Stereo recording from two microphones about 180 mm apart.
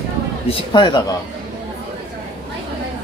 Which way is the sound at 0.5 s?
25° left (ahead or behind).